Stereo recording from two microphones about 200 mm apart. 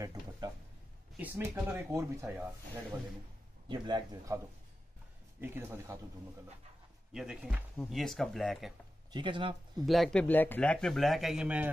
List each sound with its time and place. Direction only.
0.0 s a sound: 15° right (ahead or behind)
1.1 s speech: 10° right (ahead or behind)
3.6 s speech: 25° right (ahead or behind)
5.4 s speech: 10° right (ahead or behind)
7.1 s speech: 5° right (ahead or behind)
9.1 s speech: 25° right (ahead or behind)
9.8 s speech: centre (ahead or behind)